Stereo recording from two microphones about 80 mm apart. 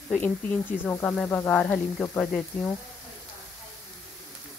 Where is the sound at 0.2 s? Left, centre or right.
Centre.